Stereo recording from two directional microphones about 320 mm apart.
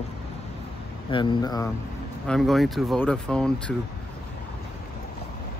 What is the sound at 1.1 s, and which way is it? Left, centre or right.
Speech, centre.